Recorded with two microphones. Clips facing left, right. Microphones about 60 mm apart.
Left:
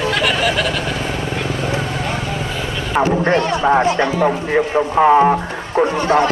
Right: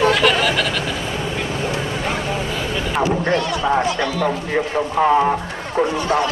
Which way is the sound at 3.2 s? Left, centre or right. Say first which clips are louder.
Left 4 dB; left.